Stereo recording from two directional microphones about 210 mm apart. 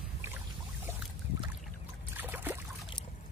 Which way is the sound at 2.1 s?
10° right (ahead or behind).